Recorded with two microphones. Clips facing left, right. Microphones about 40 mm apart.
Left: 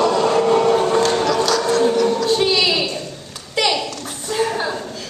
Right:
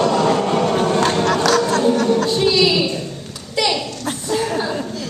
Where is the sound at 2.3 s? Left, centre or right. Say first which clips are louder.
Right 2 dB; centre.